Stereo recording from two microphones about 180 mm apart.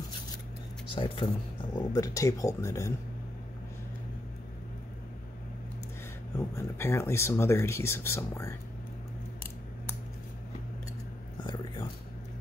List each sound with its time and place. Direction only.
0.9 s speech: 25° left (ahead or behind)
6.3 s speech: 15° left (ahead or behind)
11.4 s a sound: 25° left (ahead or behind)